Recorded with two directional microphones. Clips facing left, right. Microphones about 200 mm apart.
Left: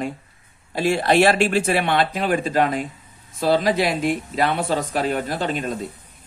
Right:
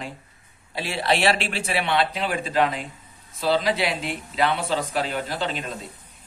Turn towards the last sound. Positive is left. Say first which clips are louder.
# left 5 dB
turn(degrees=50)  # may be behind; listen again after turning